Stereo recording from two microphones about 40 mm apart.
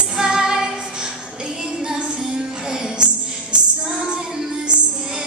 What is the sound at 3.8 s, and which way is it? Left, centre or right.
Music, centre.